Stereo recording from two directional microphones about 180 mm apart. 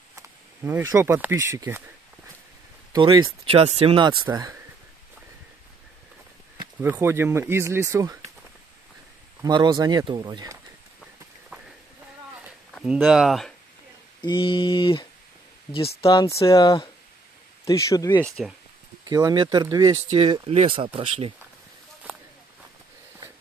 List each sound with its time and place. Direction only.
0.9 s speech: 10° right (ahead or behind)
2.9 s speech: 25° right (ahead or behind)
6.8 s speech: 10° right (ahead or behind)
9.4 s speech: 25° right (ahead or behind)
11.5 s a sound: 5° right (ahead or behind)
12.8 s speech: 5° right (ahead or behind)
14.2 s speech: 25° left (ahead or behind)
18.2 s speech: centre (ahead or behind)
19.0 s speech: 20° right (ahead or behind)
20.1 s speech: 35° right (ahead or behind)